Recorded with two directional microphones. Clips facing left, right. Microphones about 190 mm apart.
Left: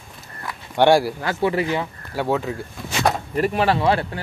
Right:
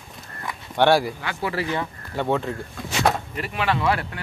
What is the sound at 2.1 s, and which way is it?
Speech, 5° left (ahead or behind).